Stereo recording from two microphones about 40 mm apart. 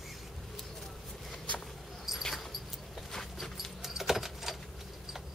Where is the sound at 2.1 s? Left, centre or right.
Centre.